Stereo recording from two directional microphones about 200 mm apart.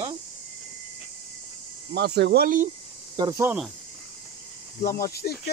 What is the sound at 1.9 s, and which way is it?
Speech, 55° right (ahead or behind).